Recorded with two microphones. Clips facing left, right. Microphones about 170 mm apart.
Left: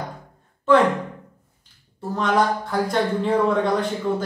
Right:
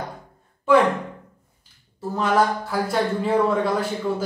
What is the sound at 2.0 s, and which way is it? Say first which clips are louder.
A woman's voice: even; 5° right (ahead or behind).